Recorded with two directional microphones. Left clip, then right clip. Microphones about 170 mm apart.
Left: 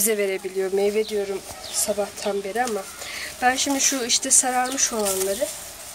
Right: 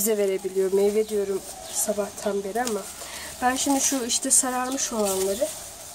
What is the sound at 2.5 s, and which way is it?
Speech, 30° right (ahead or behind).